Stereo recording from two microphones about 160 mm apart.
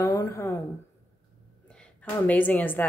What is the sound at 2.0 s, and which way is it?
Speech, 10° left (ahead or behind).